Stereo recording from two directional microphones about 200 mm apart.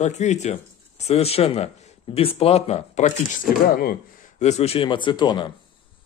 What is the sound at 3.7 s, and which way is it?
Speech, 45° left (ahead or behind).